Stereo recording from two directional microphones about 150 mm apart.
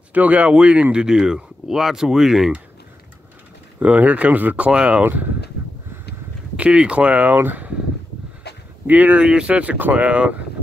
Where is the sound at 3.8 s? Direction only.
10° right (ahead or behind).